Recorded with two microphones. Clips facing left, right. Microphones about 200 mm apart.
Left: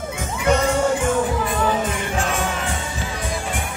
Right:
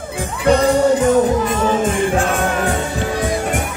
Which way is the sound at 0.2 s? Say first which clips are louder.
Right 5 dB; 35° right (ahead or behind).